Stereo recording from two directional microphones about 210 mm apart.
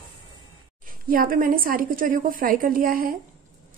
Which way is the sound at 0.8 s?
40° right (ahead or behind).